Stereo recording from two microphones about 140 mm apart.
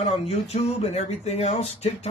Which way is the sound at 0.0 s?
50° left (ahead or behind).